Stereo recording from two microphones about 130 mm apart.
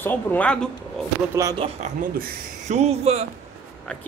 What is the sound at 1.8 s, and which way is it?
Speech, 80° right.